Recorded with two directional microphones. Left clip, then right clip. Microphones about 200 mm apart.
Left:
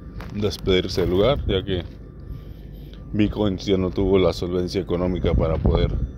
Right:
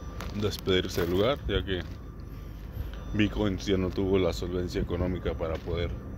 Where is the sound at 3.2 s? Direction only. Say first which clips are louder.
Left 6 dB; 20° left (ahead or behind).